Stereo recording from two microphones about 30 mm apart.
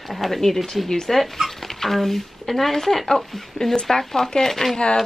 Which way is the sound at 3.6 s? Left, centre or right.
Left.